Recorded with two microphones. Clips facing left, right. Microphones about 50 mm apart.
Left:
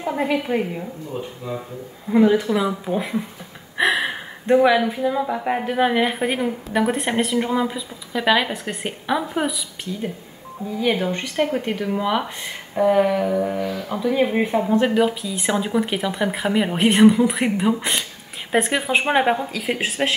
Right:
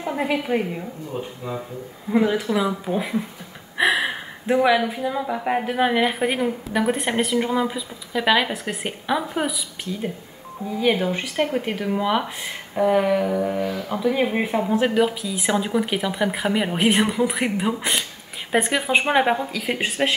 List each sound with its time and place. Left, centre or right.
0.0 s speech: centre
10.8 s speech: centre